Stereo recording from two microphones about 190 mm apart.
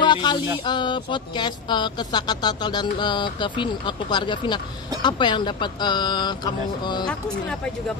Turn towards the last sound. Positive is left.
turn(degrees=20)  # may be behind; listen again after turning